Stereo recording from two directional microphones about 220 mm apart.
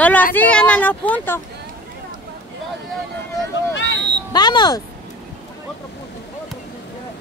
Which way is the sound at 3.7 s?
50° left (ahead or behind).